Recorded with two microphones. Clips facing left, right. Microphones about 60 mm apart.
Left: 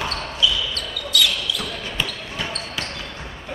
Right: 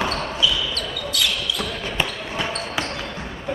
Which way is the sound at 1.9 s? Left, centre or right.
Right.